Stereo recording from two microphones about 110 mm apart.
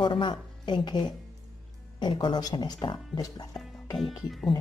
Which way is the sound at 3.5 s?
5° left (ahead or behind).